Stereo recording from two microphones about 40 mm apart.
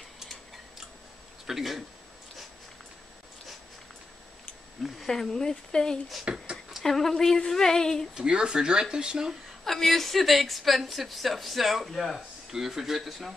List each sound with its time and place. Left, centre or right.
1.5 s a woman's voice: centre
4.8 s speech: centre
6.3 s speech: right
6.8 s speech: centre
8.1 s speech: right
9.7 s a woman's voice: centre
12.5 s speech: centre